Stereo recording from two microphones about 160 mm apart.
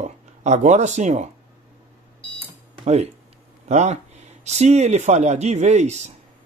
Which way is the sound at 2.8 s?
40° right (ahead or behind).